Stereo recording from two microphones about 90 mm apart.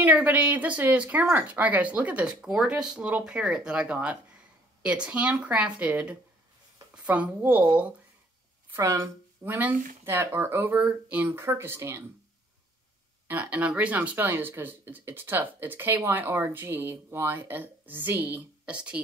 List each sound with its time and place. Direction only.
0.0 s speech: 15° right (ahead or behind)
8.6 s speech: 30° right (ahead or behind)
9.4 s speech: 20° right (ahead or behind)
11.4 s speech: 30° right (ahead or behind)
13.3 s speech: 15° right (ahead or behind)